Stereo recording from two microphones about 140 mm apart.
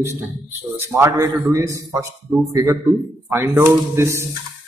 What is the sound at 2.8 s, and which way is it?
Speech, centre (ahead or behind).